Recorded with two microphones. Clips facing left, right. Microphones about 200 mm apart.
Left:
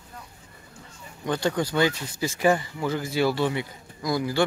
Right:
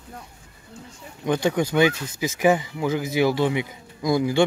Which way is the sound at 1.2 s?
15° right (ahead or behind).